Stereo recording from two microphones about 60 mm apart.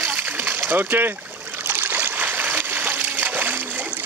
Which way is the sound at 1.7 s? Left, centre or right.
Right.